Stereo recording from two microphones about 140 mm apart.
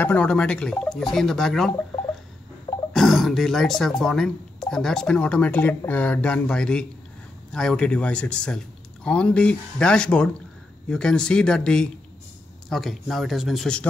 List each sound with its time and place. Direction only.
0.0 s speech: 10° left (ahead or behind)
2.9 s a man's voice: centre (ahead or behind)